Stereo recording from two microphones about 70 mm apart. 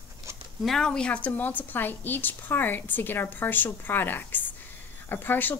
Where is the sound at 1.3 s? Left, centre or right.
Left.